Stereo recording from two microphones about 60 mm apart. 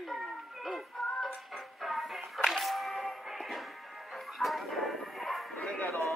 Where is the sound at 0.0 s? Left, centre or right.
Centre.